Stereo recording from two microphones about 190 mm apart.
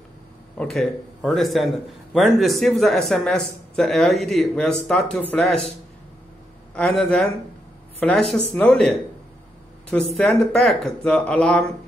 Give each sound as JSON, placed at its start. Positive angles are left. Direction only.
{"t": 0.6, "sound": "speech", "side_deg": 5}
{"t": 6.7, "sound": "a man's voice", "side_deg": 0}